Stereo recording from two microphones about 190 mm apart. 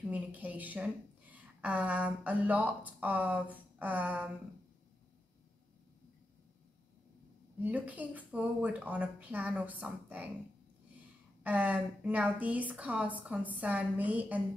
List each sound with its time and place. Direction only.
0.1 s speech: 10° right (ahead or behind)
7.6 s speech: 10° right (ahead or behind)
11.4 s speech: 10° right (ahead or behind)